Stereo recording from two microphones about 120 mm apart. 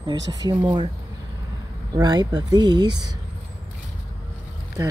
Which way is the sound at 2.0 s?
35° right (ahead or behind).